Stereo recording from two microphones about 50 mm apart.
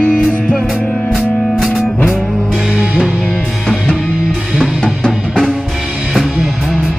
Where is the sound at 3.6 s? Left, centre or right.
Centre.